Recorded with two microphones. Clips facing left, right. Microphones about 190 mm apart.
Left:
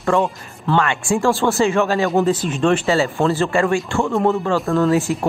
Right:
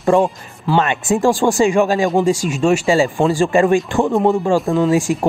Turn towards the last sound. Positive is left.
turn(degrees=-15)  # may be behind; listen again after turning